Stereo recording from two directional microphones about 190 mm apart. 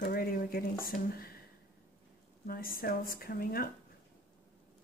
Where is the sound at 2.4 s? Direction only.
50° left (ahead or behind).